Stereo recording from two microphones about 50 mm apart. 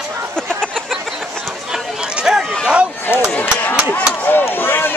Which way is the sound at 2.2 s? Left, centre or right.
Centre.